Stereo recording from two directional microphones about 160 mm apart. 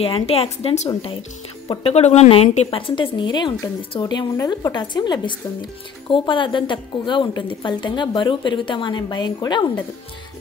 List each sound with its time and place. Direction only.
0.0 s speech: 35° left (ahead or behind)